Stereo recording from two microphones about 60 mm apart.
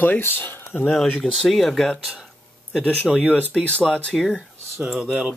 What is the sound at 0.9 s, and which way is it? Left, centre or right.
Speech, centre.